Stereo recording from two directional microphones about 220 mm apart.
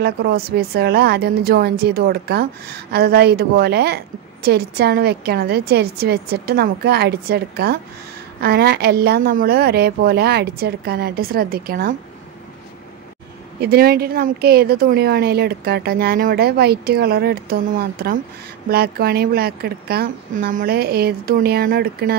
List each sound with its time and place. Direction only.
0.0 s a woman's voice: 45° right (ahead or behind)
13.6 s a woman's voice: 45° right (ahead or behind)